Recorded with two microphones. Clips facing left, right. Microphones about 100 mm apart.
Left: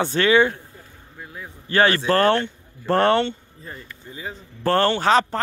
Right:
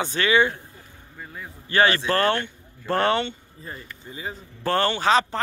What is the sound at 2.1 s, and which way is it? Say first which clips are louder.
Speech: left 4 dB; 50° left (ahead or behind).